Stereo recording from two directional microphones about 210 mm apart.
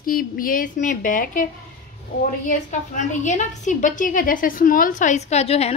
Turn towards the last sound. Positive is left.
turn(degrees=30)  # may be behind; listen again after turning